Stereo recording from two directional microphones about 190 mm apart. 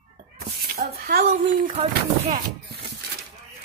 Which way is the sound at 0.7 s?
50° right (ahead or behind).